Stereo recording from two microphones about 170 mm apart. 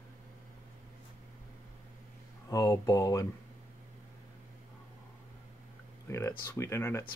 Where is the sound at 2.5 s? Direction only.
20° left (ahead or behind).